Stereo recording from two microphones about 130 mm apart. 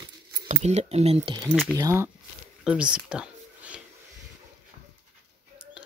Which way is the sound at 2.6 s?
10° right (ahead or behind).